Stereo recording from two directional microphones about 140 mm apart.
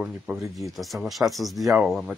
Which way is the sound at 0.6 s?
Centre (ahead or behind).